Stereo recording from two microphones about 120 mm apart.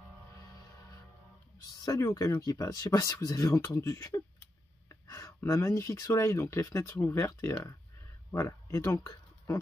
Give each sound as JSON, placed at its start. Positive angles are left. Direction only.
{"t": 1.9, "sound": "speech", "side_deg": 25}